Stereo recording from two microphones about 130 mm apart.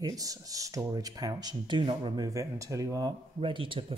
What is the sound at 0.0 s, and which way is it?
Speech, 25° right (ahead or behind).